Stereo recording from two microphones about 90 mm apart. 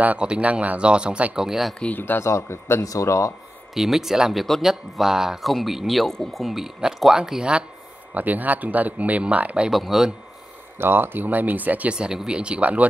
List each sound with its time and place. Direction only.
0.0 s speech: 15° right (ahead or behind)
1.8 s speech: 20° left (ahead or behind)
3.7 s speech: 5° right (ahead or behind)
9.7 s speech: 5° right (ahead or behind)
10.8 s speech: 25° right (ahead or behind)